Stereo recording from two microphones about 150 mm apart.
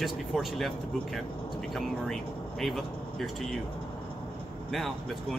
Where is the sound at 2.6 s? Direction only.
Centre (ahead or behind).